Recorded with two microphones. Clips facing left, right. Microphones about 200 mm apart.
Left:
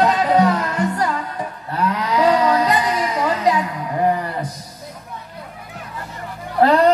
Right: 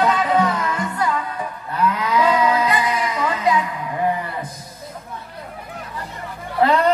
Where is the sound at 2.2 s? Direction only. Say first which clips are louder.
Left 2 dB; 35° left (ahead or behind).